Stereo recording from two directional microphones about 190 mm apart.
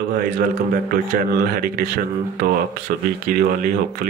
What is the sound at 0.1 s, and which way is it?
Speech, 50° right (ahead or behind).